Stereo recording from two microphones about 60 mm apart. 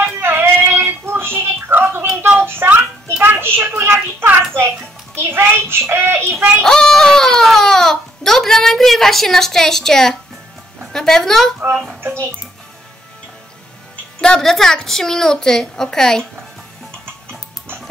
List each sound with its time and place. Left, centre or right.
0.0 s a sound: right
5.1 s child singing: right
6.6 s a sound: centre
10.9 s speech: centre
12.0 s music: right
14.2 s a woman's voice: centre